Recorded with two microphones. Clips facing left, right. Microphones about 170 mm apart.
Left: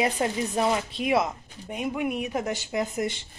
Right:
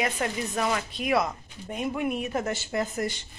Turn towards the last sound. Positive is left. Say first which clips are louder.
# left 1 dB
turn(degrees=15)  # may be behind; listen again after turning